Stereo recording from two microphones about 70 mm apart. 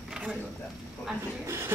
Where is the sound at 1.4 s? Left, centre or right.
Right.